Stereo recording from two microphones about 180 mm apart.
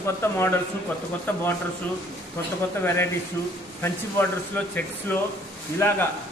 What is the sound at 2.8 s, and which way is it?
Speech, 15° left (ahead or behind).